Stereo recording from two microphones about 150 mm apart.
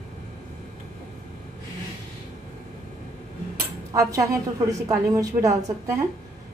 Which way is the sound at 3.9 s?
20° right (ahead or behind).